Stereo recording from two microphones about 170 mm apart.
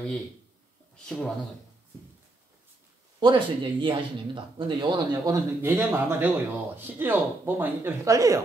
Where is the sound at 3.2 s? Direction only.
30° right (ahead or behind).